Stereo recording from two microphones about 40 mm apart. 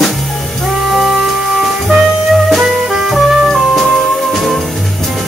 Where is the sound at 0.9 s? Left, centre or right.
Centre.